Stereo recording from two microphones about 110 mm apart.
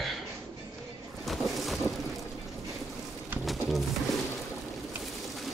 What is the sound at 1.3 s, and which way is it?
Boat, centre (ahead or behind).